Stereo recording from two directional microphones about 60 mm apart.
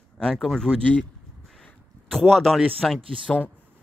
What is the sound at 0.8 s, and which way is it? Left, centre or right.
Speech, left.